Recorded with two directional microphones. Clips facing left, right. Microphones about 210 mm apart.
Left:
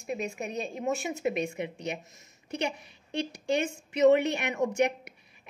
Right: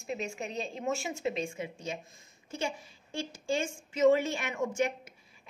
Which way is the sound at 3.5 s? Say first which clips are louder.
Left 3 dB; 20° left (ahead or behind).